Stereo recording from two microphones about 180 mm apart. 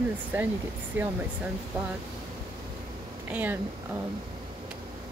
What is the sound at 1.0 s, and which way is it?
Speech, 10° right (ahead or behind).